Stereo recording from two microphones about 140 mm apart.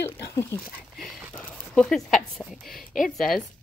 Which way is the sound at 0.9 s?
5° left (ahead or behind).